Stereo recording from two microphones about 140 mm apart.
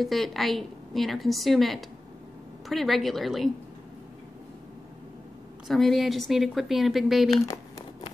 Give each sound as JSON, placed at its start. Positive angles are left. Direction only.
{"t": 0.0, "sound": "a woman's voice", "side_deg": 0}
{"t": 5.7, "sound": "a woman's voice", "side_deg": 0}
{"t": 7.4, "sound": "crumpling", "side_deg": 25}